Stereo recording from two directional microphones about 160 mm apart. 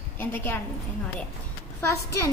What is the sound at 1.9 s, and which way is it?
Speech, 20° left (ahead or behind).